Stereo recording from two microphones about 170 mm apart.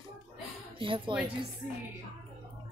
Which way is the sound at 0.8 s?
30° right (ahead or behind).